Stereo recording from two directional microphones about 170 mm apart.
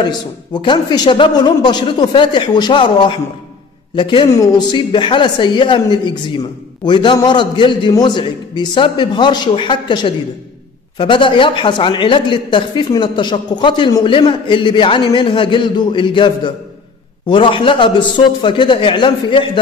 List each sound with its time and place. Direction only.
0.0 s a woman's voice: 30° left (ahead or behind)